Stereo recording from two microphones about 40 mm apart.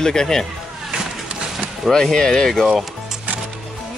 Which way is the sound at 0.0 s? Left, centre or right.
Centre.